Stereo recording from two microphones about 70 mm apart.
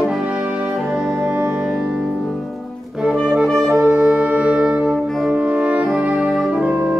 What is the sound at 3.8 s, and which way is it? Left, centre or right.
Brass instrument, centre.